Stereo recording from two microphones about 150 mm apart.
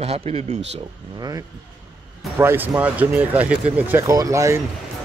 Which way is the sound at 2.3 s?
15° right (ahead or behind).